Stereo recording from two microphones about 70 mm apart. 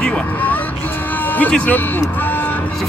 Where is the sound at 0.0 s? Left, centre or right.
Left.